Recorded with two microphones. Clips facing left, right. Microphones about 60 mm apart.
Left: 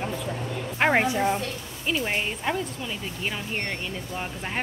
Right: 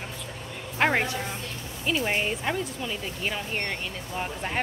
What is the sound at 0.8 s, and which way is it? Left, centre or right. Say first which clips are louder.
Speech: left 3 dB; centre.